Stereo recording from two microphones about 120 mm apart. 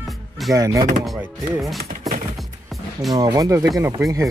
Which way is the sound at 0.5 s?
30° right (ahead or behind).